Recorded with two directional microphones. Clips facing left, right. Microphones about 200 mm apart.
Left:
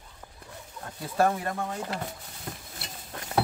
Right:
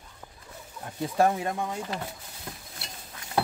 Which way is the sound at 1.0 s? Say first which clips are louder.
Right 1 dB; 15° right (ahead or behind).